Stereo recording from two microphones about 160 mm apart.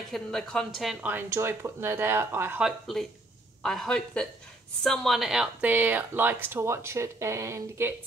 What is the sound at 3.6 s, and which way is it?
Speech, 5° left (ahead or behind).